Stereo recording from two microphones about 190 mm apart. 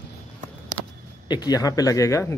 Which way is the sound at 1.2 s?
20° left (ahead or behind).